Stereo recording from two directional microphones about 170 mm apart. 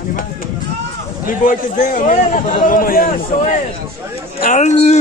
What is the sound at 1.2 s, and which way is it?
A man's voice, 55° left (ahead or behind).